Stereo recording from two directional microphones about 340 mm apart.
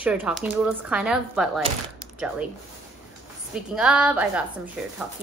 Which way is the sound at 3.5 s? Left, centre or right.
Centre.